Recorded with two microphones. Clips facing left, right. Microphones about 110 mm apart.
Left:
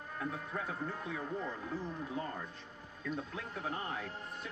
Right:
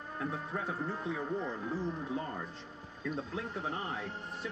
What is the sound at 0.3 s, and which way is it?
Speech, 30° right (ahead or behind).